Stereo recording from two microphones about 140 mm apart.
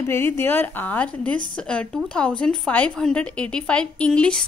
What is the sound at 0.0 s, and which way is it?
A woman's voice, 20° left (ahead or behind).